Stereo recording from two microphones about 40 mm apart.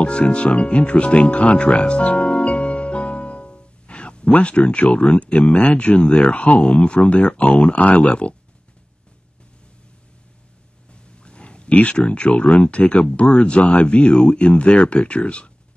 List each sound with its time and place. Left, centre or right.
0.0 s speech: left
2.0 s music: left
7.3 s speech: left
8.0 s speech: left
10.9 s speech: left